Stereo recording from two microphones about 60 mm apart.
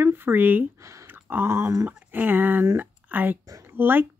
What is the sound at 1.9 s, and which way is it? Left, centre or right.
Speech, right.